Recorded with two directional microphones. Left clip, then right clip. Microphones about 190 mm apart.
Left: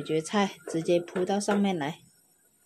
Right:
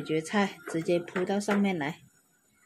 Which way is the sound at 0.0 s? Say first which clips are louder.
Left 1 dB; centre (ahead or behind).